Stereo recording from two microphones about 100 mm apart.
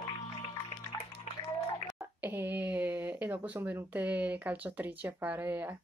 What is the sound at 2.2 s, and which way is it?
Speech, 20° right (ahead or behind).